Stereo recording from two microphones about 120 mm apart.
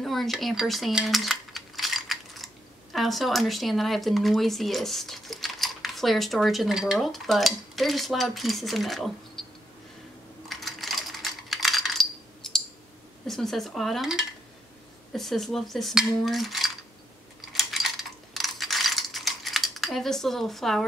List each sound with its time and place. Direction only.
0.0 s cutlery: centre (ahead or behind)
10.5 s coin: centre (ahead or behind)
13.3 s cutlery: centre (ahead or behind)
15.1 s cutlery: centre (ahead or behind)
17.5 s mechanisms: centre (ahead or behind)